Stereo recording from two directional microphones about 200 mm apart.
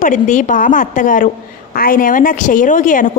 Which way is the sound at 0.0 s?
40° left (ahead or behind).